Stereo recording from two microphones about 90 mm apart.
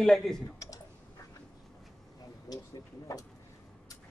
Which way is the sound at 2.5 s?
45° left (ahead or behind).